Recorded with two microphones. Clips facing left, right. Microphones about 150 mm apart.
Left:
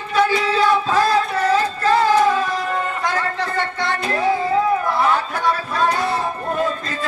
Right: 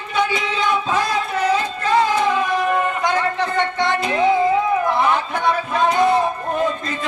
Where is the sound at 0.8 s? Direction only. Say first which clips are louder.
Left 3 dB; 15° right (ahead or behind).